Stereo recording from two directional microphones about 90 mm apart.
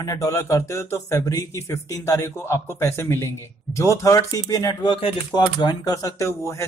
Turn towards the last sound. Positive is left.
turn(degrees=35)  # may be behind; listen again after turning